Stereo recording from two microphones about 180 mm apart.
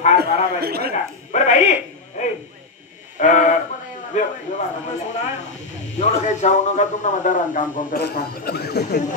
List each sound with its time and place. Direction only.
0.6 s speech: 60° right (ahead or behind)
1.3 s a sound: 40° left (ahead or behind)
5.9 s a man's voice: 40° left (ahead or behind)
8.0 s speech: 60° left (ahead or behind)